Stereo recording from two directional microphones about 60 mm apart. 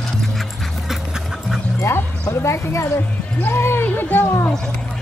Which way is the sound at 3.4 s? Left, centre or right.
Left.